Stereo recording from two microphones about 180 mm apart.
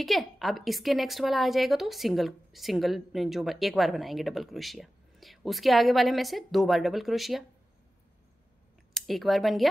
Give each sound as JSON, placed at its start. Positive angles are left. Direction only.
{"t": 0.0, "sound": "a woman's voice", "side_deg": 0}
{"t": 8.9, "sound": "speech", "side_deg": 0}